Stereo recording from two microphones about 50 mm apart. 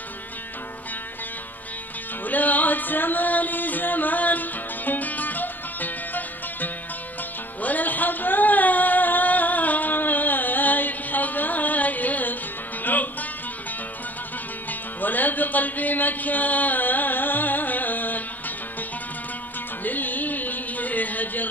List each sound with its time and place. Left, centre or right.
2.2 s music: left
7.6 s a sound: left
12.8 s music: left
14.7 s music: left
19.8 s music: left